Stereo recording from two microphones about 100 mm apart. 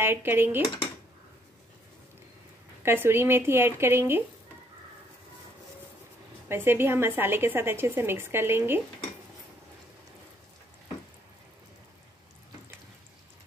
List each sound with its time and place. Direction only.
0.0 s a woman's voice: 20° right (ahead or behind)
2.8 s a woman's voice: 25° right (ahead or behind)
6.5 s a woman's voice: 20° right (ahead or behind)